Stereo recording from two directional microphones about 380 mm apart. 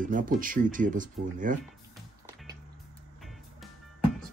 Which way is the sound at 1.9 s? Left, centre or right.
Centre.